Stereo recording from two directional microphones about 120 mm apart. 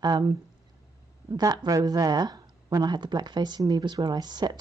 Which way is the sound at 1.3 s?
30° right (ahead or behind).